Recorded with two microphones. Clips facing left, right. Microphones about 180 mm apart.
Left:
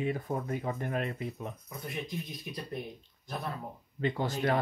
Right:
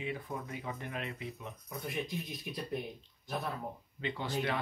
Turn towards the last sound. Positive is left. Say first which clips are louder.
# left 5 dB
turn(degrees=45)  # may be behind; listen again after turning